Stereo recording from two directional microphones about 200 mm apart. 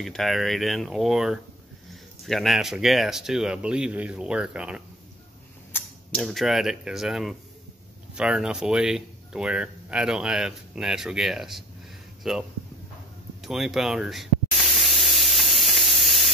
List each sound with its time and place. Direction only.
0.0 s speech: centre (ahead or behind)
5.7 s speech: 5° left (ahead or behind)
13.4 s spray: centre (ahead or behind)